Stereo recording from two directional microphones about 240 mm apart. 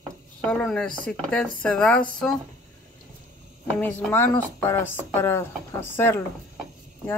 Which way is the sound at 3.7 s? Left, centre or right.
Centre.